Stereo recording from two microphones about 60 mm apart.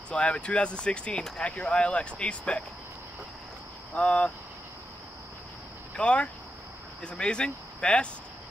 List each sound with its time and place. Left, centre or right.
0.1 s speech: centre
3.9 s speech: centre
5.9 s speech: centre